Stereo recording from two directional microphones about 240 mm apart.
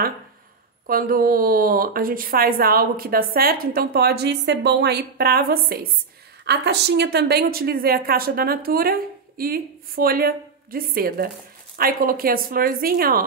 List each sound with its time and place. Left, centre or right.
0.8 s speech: right